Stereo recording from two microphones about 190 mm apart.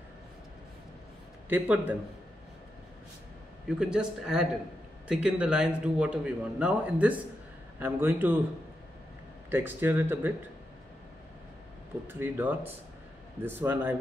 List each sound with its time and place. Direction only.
1.5 s a man's voice: 10° right (ahead or behind)
3.6 s a man's voice: 5° right (ahead or behind)
9.5 s a man's voice: 10° right (ahead or behind)
12.1 s a man's voice: 10° right (ahead or behind)